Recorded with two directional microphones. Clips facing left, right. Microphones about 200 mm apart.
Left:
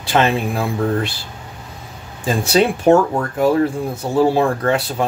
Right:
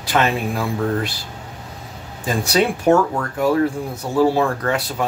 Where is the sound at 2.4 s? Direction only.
25° left (ahead or behind).